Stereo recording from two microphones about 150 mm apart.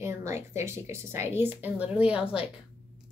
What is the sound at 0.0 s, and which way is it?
A woman's voice, 20° right (ahead or behind).